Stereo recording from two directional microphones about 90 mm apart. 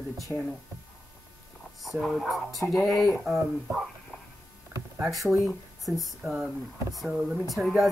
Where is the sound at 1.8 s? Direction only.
Centre (ahead or behind).